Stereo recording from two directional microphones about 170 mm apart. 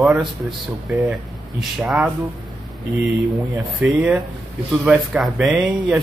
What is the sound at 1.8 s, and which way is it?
Speech, 10° right (ahead or behind).